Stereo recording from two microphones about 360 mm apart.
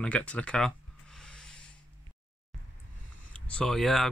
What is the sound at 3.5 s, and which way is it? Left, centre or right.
Speech, centre.